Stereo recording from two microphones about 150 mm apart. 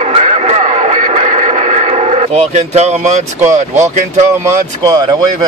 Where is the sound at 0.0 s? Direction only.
45° right (ahead or behind).